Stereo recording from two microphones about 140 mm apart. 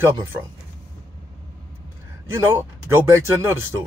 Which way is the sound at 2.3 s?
20° right (ahead or behind).